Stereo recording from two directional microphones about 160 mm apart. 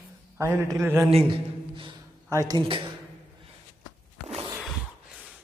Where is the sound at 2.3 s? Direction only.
20° right (ahead or behind).